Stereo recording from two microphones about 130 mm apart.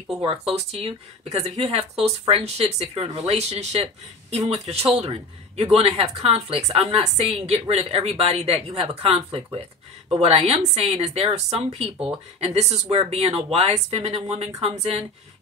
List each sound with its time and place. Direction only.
0.3 s speech: 50° right (ahead or behind)
12.9 s speech: 50° right (ahead or behind)